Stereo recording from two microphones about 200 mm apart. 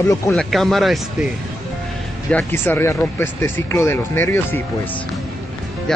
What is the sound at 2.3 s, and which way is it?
Speech, 10° left (ahead or behind).